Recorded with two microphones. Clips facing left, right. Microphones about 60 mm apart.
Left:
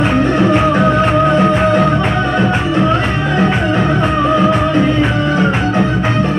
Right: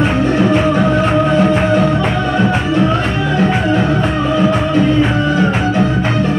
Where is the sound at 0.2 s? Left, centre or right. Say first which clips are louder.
Left 1 dB; left.